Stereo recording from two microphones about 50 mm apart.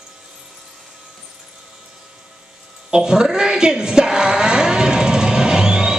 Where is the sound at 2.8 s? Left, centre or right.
Centre.